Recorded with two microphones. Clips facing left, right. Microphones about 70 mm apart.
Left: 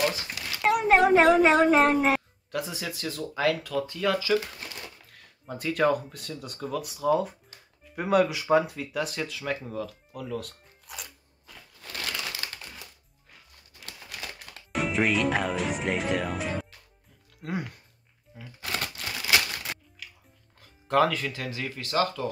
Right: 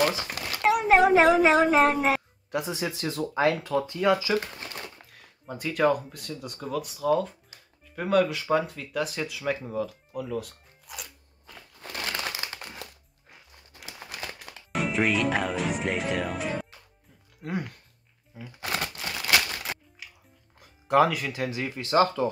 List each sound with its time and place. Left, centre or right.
0.0 s a sound: right
0.6 s speech: centre
2.5 s speech: right
4.6 s a sound: right
5.5 s speech: centre
11.8 s crumpling: right
14.0 s speech: centre
18.7 s crumpling: centre
20.0 s music: centre
20.5 s speech: centre